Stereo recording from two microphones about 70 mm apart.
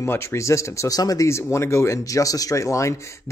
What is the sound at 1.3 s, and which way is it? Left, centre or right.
Speech, left.